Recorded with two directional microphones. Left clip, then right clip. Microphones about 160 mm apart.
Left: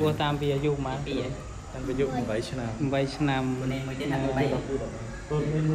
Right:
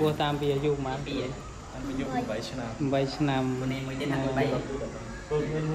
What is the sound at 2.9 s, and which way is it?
Speech, 10° right (ahead or behind).